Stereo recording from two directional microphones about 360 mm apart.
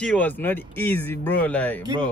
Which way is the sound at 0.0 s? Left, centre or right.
Centre.